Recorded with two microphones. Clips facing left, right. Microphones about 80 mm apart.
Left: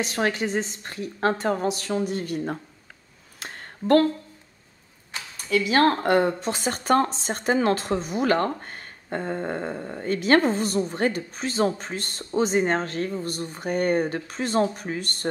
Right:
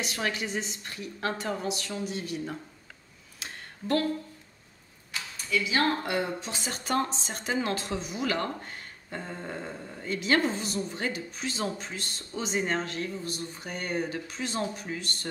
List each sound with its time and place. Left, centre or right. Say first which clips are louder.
0.0 s a woman's voice: left 7 dB; left
3.3 s a sound: left 5 dB; left
5.5 s speech: left 7 dB; left